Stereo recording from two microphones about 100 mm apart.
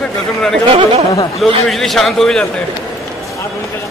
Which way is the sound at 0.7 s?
65° right (ahead or behind).